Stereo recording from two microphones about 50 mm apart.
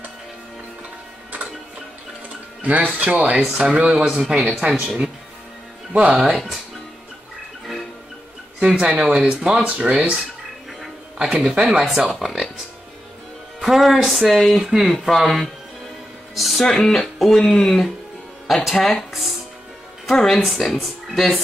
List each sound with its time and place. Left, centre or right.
2.6 s speech: right
3.4 s speech: centre
6.2 s speech: centre
8.5 s speech: centre
11.1 s speech: right
12.1 s speech: centre
13.6 s speech: centre
16.3 s music: centre
16.6 s speech: centre